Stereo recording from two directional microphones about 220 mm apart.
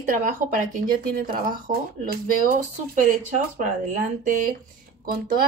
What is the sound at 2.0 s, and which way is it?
Speech, 40° right (ahead or behind).